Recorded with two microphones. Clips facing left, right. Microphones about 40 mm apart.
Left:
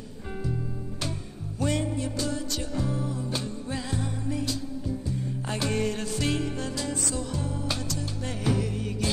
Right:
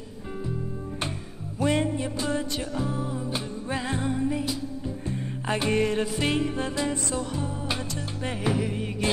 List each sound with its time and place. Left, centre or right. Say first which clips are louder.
1.6 s music: right 3 dB; centre
2.0 s music: right 2 dB; right
3.6 s music: right 4 dB; right
5.0 s music: right 2 dB; right